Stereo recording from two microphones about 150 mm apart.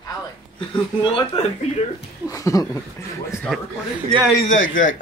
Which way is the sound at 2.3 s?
20° left (ahead or behind).